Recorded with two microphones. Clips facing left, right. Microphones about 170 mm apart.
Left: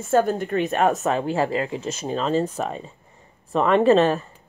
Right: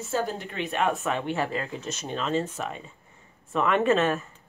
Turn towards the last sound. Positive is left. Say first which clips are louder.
# left 6 dB
turn(degrees=35)  # may be behind; listen again after turning